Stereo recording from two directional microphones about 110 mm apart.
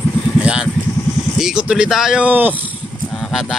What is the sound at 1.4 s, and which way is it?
A man's voice, 5° right (ahead or behind).